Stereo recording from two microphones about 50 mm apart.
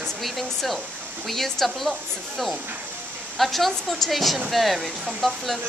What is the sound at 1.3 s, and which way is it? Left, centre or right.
Speech, centre.